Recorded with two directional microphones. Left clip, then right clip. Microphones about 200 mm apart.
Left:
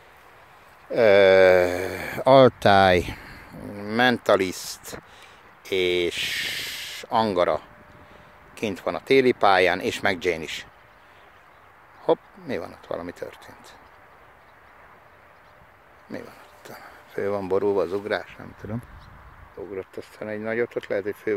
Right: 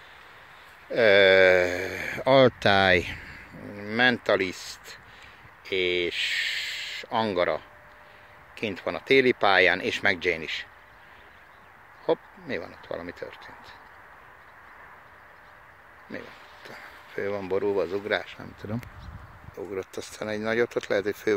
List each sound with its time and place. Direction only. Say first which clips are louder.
0.8 s a sound: left 2 dB; 15° left (ahead or behind)
5.7 s speech: left 3 dB; 25° left (ahead or behind)
12.1 s speech: left 4 dB; 20° left (ahead or behind)
16.1 s speech: left 2 dB; 15° left (ahead or behind)
18.2 s speech: even; 5° right (ahead or behind)